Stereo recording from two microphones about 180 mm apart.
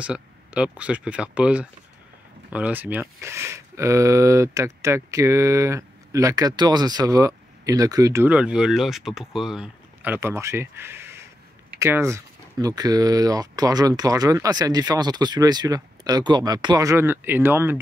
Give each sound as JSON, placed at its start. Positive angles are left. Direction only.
{"t": 0.0, "sound": "speech", "side_deg": -5}